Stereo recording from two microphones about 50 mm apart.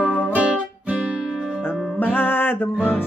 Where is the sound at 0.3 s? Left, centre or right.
Right.